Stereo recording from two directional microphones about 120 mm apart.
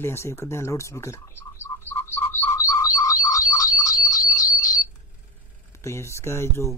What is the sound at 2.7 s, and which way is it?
Frog, 25° left (ahead or behind).